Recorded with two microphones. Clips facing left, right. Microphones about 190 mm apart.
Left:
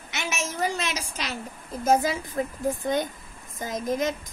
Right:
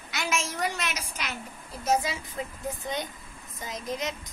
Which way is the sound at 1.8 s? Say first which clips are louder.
Left 5 dB; 50° left (ahead or behind).